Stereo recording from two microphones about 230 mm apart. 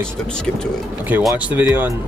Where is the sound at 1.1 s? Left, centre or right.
Centre.